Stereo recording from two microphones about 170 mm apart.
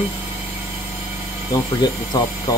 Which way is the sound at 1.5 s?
20° left (ahead or behind).